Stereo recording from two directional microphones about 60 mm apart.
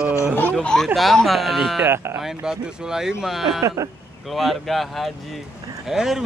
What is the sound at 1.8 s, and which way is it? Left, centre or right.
Speech, right.